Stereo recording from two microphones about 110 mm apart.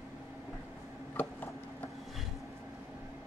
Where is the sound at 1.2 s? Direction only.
15° left (ahead or behind).